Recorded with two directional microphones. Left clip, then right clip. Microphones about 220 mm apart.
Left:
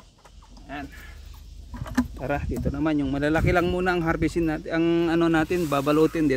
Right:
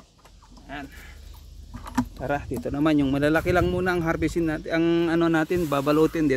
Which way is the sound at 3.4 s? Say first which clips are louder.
Even; centre (ahead or behind).